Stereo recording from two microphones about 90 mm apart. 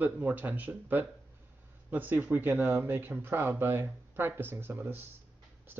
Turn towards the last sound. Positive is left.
turn(degrees=-25)  # may be behind; listen again after turning